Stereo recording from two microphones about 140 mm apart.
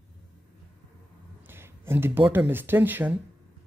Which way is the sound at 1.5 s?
15° right (ahead or behind).